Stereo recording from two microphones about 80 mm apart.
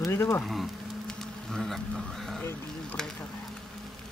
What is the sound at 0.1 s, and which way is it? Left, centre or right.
Speech, left.